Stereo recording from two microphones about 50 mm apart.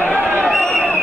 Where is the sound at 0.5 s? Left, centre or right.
Centre.